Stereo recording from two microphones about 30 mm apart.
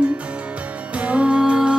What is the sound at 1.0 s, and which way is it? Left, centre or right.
Music, right.